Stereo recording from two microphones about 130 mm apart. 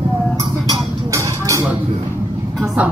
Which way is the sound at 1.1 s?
25° right (ahead or behind).